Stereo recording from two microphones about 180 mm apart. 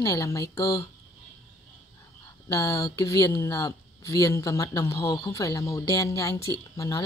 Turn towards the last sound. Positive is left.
turn(degrees=20)  # may be behind; listen again after turning